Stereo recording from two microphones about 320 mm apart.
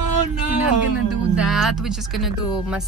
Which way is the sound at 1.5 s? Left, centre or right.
Centre.